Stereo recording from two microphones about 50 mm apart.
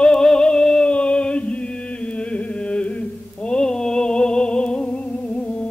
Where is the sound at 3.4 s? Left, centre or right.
Centre.